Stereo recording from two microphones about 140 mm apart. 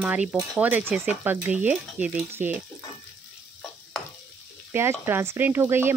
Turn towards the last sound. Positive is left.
turn(degrees=-15)  # may be behind; listen again after turning